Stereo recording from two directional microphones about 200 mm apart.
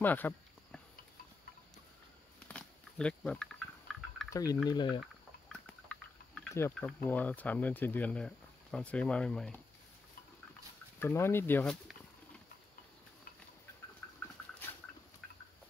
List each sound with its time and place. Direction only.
0.0 s a sound: 10° left (ahead or behind)
2.4 s insect: 5° left (ahead or behind)
4.3 s speech: 20° left (ahead or behind)
5.0 s a sound: 5° left (ahead or behind)
6.5 s speech: 10° left (ahead or behind)
11.0 s speech: 10° left (ahead or behind)